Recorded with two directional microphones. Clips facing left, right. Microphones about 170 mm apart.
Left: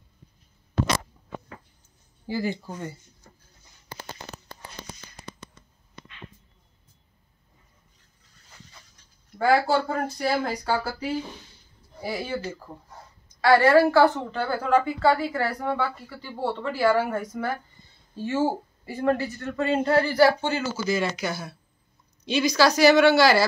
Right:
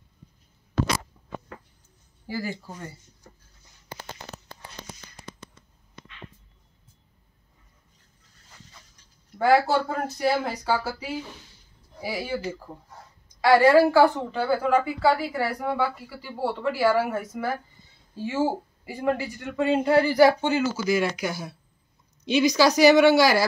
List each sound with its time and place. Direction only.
2.2 s speech: 20° left (ahead or behind)
9.4 s speech: 5° right (ahead or behind)